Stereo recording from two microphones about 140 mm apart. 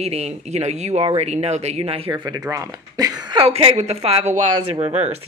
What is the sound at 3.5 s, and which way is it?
Speech, 45° right (ahead or behind).